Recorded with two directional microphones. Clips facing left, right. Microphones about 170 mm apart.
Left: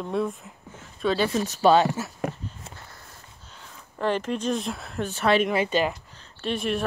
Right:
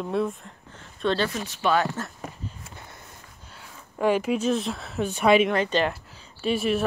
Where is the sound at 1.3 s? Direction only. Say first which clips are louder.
Left 6 dB; 35° left (ahead or behind).